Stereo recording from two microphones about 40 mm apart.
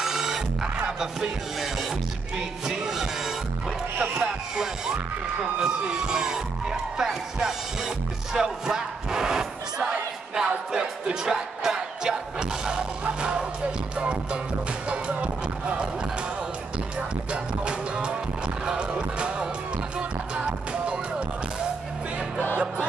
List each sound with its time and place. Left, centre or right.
0.0 s music: centre
2.3 s speech: centre
13.4 s music: right
17.3 s music: right